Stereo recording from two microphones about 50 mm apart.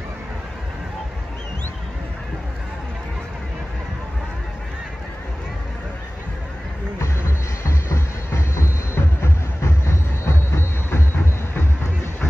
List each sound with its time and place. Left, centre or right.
7.0 s music: left